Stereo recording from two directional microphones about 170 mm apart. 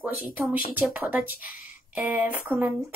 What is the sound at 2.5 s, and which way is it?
Speech, 10° right (ahead or behind).